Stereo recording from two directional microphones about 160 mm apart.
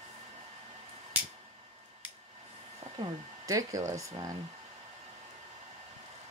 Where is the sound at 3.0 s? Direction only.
20° right (ahead or behind).